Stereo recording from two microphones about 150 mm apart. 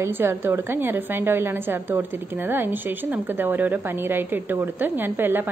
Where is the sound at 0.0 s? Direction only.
15° right (ahead or behind).